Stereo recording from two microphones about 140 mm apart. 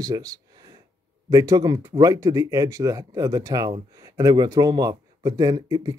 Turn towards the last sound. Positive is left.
turn(degrees=-25)  # may be behind; listen again after turning